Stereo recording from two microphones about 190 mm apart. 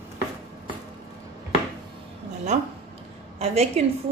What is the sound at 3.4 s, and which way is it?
Speech, 30° right (ahead or behind).